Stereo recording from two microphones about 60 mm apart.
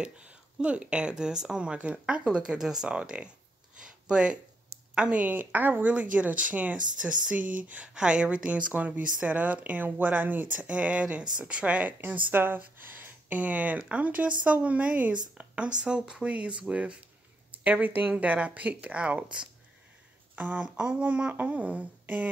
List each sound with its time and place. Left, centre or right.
0.0 s speech: centre
3.0 s speech: centre
3.8 s a sound: centre
4.9 s speech: centre
7.9 s speech: centre
20.3 s speech: right